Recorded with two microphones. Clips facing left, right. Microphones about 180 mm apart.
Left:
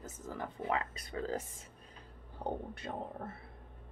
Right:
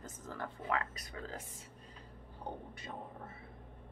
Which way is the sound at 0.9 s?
30° left (ahead or behind).